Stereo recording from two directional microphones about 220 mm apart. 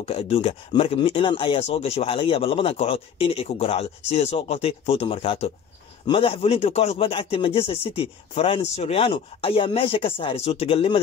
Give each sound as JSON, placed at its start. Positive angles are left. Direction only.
{"t": 0.0, "sound": "speech", "side_deg": 30}